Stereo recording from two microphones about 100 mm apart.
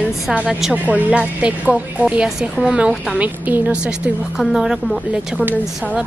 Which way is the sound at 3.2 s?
15° right (ahead or behind).